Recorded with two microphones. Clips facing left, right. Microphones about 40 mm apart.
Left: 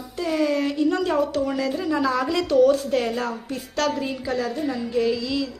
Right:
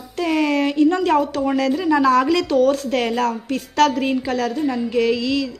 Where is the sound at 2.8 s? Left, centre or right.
Right.